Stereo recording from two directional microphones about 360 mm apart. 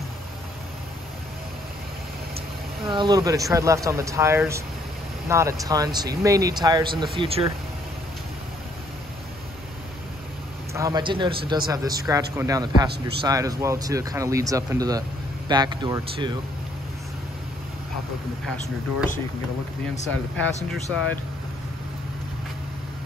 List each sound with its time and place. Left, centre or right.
2.9 s speech: centre
10.7 s speech: centre
20.1 s speech: centre